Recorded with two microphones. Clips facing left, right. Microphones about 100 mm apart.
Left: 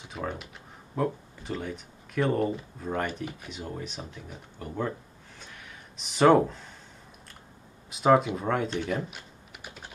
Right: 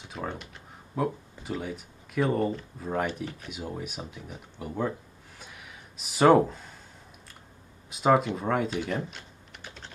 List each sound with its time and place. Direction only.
0.0 s speech: centre (ahead or behind)
5.4 s a sound: 5° right (ahead or behind)
7.9 s speech: centre (ahead or behind)